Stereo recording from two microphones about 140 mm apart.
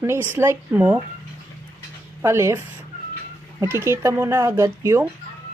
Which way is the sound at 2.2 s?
20° right (ahead or behind).